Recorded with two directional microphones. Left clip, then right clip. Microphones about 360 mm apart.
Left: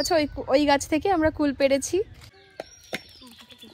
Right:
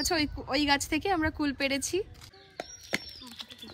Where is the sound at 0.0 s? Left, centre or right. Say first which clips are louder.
Left 7 dB; centre.